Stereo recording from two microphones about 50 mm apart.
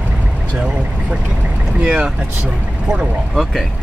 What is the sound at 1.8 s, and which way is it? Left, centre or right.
Speech, right.